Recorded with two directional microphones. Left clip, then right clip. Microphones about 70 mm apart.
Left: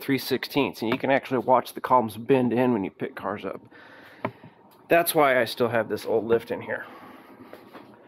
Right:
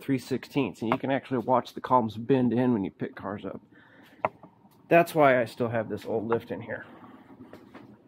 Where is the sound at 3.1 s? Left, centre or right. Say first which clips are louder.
Left 5 dB; centre.